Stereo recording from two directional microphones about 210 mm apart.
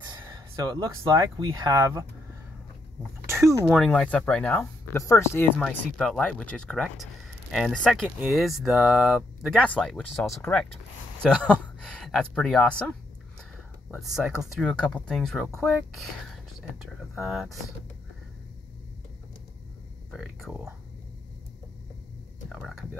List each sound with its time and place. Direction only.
0.0 s speech: 20° right (ahead or behind)
3.3 s a sound: 15° right (ahead or behind)
3.6 s speech: centre (ahead or behind)
20.1 s speech: centre (ahead or behind)
22.5 s speech: 5° right (ahead or behind)